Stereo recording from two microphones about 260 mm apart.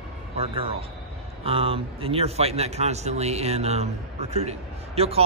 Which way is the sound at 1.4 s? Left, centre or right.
Right.